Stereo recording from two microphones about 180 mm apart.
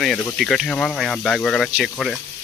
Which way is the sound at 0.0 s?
Centre (ahead or behind).